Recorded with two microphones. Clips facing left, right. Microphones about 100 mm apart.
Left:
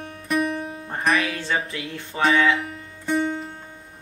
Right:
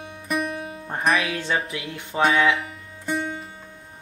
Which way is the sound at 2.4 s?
Centre (ahead or behind).